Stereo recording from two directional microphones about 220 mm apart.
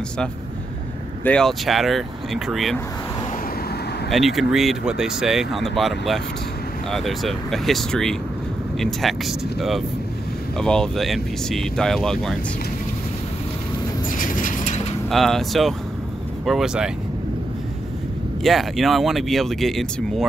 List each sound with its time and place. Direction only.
1.2 s speech: 5° left (ahead or behind)
4.1 s speech: centre (ahead or behind)
14.1 s vehicle: 40° left (ahead or behind)
15.0 s speech: centre (ahead or behind)
18.4 s speech: centre (ahead or behind)